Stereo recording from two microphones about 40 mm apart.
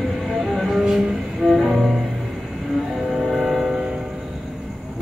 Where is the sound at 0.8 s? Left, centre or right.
Centre.